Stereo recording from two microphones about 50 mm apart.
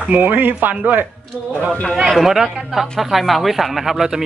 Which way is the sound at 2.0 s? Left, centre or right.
Centre.